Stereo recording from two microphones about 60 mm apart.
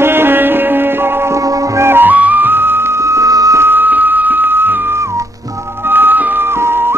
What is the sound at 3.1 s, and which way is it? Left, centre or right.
Music, right.